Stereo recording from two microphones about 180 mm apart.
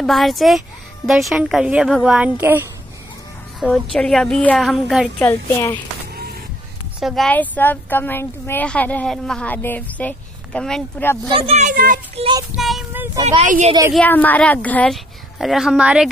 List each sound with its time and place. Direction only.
0.0 s speech: centre (ahead or behind)
3.5 s a woman's voice: centre (ahead or behind)
5.3 s speech: 15° left (ahead or behind)
7.0 s speech: 5° right (ahead or behind)
7.2 s speech: 10° left (ahead or behind)
11.2 s speech: 30° right (ahead or behind); by 12.0 s 50° right (ahead or behind)
12.5 s speech: centre (ahead or behind)
13.4 s speech: 40° right (ahead or behind)
13.9 s speech: 10° left (ahead or behind)